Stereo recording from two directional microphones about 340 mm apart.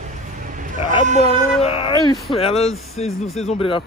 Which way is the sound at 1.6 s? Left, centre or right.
Centre.